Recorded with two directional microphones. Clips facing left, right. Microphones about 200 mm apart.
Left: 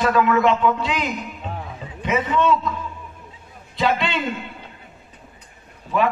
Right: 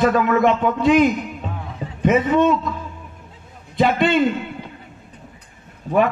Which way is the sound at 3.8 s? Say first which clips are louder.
Right 6 dB; 50° right (ahead or behind).